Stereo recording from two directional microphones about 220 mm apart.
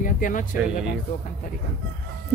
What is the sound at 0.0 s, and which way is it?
Speech, 35° left (ahead or behind).